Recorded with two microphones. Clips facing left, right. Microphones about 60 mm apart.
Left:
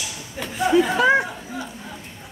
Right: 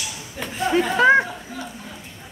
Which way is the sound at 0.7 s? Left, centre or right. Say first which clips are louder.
Right 1 dB; right.